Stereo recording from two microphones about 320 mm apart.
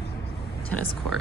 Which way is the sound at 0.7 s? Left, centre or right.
Centre.